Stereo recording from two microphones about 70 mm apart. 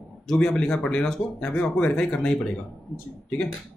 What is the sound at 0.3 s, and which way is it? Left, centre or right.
Speech, centre.